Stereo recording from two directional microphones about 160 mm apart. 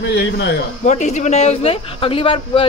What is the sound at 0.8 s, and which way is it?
Speech, 50° left (ahead or behind).